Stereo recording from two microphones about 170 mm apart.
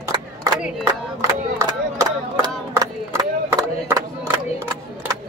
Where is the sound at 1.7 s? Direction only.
20° right (ahead or behind).